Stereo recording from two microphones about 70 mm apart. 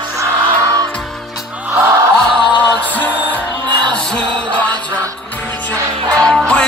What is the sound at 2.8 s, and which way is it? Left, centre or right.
Music, left.